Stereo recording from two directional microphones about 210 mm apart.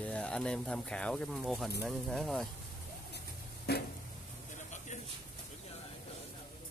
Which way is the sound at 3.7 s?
50° left (ahead or behind).